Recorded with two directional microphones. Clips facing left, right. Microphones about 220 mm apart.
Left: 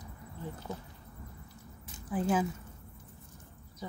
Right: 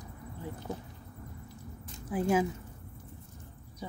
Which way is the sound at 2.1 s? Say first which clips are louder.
Right 2 dB; 10° right (ahead or behind).